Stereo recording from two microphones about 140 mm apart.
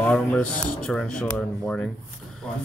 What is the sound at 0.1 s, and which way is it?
Speech, 10° left (ahead or behind).